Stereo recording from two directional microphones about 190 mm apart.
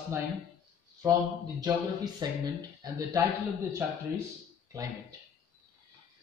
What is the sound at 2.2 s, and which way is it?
Speech, 20° right (ahead or behind).